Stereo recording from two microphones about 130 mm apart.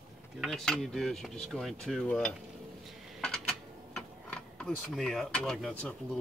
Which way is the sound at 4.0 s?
5° left (ahead or behind).